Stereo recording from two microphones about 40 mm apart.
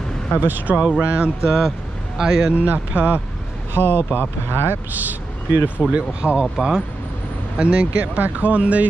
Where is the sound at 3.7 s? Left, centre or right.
Left.